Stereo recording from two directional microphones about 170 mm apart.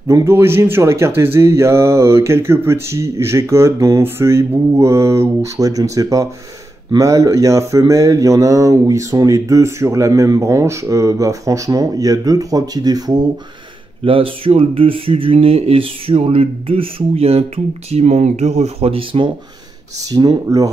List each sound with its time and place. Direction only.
0.1 s speech: 15° right (ahead or behind)